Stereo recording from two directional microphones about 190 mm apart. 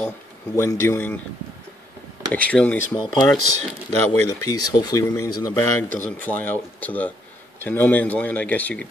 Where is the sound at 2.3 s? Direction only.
5° left (ahead or behind).